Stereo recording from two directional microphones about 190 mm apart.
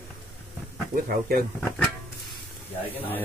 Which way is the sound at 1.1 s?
50° right (ahead or behind).